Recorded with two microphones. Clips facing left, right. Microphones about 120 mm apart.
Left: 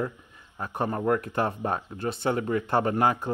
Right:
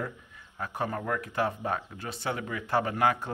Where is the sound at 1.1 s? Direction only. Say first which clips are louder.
Left 4 dB; 45° left (ahead or behind).